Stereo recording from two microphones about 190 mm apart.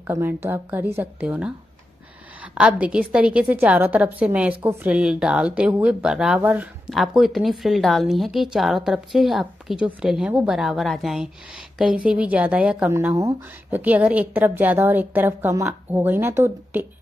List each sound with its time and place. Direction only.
0.0 s a woman's voice: 10° right (ahead or behind)